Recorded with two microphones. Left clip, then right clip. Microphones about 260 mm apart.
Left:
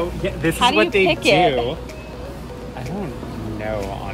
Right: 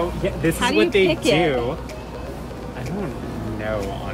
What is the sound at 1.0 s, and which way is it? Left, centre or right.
Speech, left.